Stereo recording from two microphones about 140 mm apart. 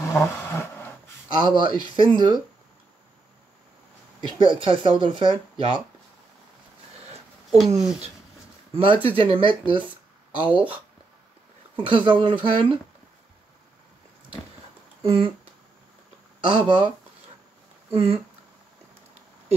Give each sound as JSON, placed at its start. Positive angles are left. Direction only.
{"t": 0.0, "sound": "a sound", "side_deg": 15}
{"t": 1.3, "sound": "speech", "side_deg": -35}
{"t": 4.5, "sound": "speech", "side_deg": -40}
{"t": 8.7, "sound": "speech", "side_deg": -40}
{"t": 11.7, "sound": "speech", "side_deg": -35}
{"t": 15.0, "sound": "speech", "side_deg": -40}
{"t": 16.4, "sound": "speech", "side_deg": -35}
{"t": 17.9, "sound": "speech", "side_deg": -40}